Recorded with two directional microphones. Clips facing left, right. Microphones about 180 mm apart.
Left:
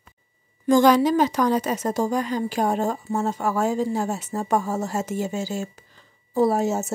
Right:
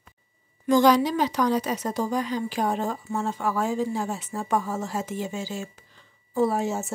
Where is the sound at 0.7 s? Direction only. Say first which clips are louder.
Left 3 dB; 50° left (ahead or behind).